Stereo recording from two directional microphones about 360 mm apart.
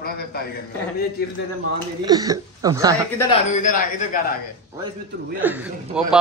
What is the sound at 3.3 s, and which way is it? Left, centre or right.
Speech, left.